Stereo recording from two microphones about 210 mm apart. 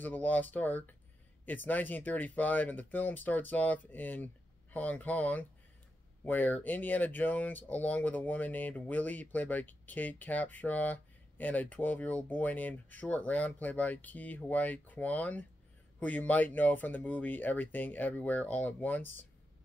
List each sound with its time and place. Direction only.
0.0 s speech: 10° left (ahead or behind)